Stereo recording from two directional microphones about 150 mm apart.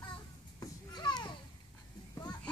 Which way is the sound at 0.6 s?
30° left (ahead or behind).